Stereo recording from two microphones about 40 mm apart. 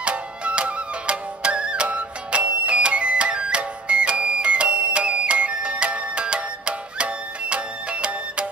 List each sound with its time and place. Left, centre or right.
0.0 s music: right